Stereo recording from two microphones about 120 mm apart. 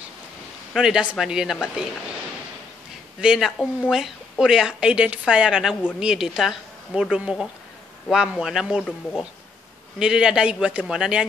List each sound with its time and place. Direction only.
0.7 s speech: 5° right (ahead or behind)
3.2 s a woman's voice: 5° right (ahead or behind)
9.9 s a woman's voice: 5° right (ahead or behind)